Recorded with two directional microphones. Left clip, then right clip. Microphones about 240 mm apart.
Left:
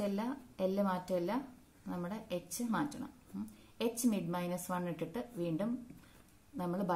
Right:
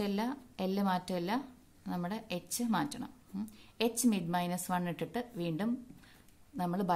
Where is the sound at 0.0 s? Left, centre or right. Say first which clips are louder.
Right 2 dB; right.